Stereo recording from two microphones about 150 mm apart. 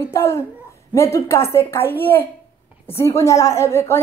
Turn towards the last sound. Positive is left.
turn(degrees=20)  # may be behind; listen again after turning